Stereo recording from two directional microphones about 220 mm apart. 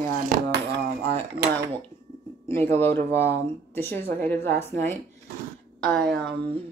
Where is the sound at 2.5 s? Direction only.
10° left (ahead or behind).